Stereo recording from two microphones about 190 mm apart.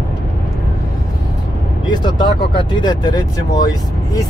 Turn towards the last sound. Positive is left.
turn(degrees=20)  # may be behind; listen again after turning